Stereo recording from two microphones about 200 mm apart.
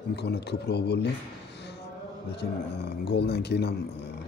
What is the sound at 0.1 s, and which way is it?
Speech, 55° left (ahead or behind).